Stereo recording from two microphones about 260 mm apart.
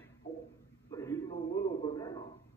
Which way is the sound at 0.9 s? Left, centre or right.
Centre.